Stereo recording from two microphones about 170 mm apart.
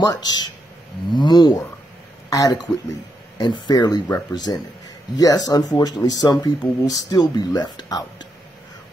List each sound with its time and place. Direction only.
0.0 s speech: 20° left (ahead or behind)